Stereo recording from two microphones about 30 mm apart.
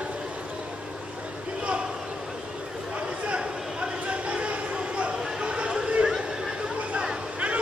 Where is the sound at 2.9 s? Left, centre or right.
Right.